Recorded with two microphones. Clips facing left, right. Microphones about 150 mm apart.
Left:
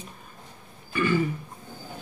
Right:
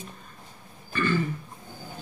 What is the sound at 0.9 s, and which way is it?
Throat clearing, 10° left (ahead or behind).